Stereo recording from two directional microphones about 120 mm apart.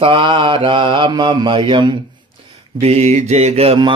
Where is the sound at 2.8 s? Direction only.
65° right (ahead or behind).